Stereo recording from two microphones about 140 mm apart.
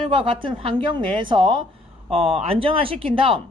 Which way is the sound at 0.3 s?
35° right (ahead or behind).